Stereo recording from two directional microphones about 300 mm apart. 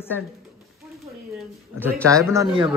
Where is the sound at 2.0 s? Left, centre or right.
Centre.